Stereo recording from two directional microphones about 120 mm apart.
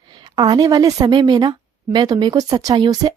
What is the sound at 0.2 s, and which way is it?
A woman's voice, 35° right (ahead or behind).